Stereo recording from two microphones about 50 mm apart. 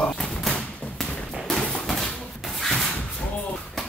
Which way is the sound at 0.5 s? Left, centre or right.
Left.